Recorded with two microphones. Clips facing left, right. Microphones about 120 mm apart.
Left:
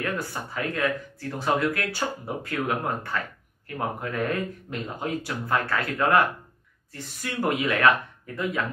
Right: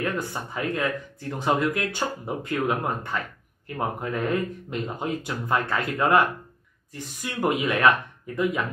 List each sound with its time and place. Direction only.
0.0 s speech: 15° right (ahead or behind)